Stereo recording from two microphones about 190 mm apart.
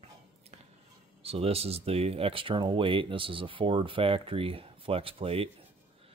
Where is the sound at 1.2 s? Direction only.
30° right (ahead or behind).